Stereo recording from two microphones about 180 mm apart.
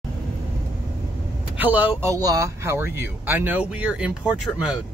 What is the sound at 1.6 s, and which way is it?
Speech, 10° right (ahead or behind).